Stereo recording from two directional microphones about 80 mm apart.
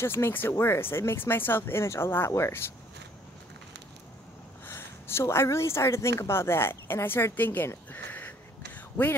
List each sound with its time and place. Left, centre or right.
0.0 s speech: left
4.6 s speech: left
8.1 s sniff: left